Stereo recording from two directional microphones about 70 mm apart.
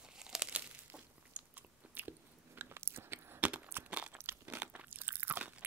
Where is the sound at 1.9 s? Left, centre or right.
Right.